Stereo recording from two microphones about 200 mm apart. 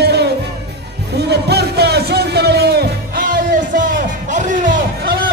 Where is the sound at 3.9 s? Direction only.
40° right (ahead or behind).